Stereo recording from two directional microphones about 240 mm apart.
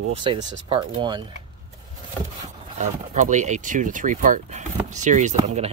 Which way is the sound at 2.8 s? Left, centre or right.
Right.